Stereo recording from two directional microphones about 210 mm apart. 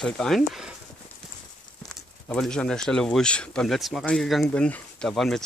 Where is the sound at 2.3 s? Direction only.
5° left (ahead or behind).